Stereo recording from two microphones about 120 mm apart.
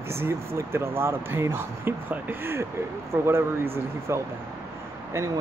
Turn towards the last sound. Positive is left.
turn(degrees=-25)  # may be behind; listen again after turning